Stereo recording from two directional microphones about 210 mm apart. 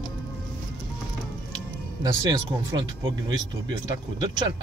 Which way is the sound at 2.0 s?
15° right (ahead or behind).